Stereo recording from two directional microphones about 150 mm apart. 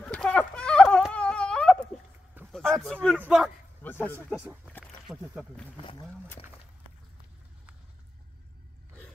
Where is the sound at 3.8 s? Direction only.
15° left (ahead or behind).